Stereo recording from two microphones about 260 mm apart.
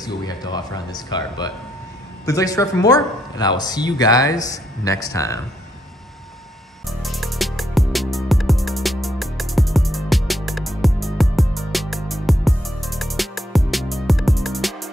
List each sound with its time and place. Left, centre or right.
0.0 s speech: centre
6.9 s music: centre